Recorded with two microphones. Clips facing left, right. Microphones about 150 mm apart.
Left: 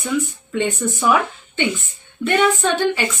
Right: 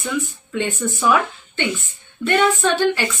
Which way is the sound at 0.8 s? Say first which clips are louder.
Right 1 dB; 20° left (ahead or behind).